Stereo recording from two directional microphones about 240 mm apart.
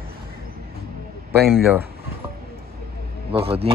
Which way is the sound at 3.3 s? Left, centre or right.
Right.